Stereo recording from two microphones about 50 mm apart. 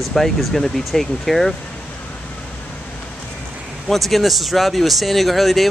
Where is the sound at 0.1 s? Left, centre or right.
Centre.